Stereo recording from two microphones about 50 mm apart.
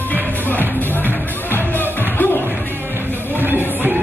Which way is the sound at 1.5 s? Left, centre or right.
Left.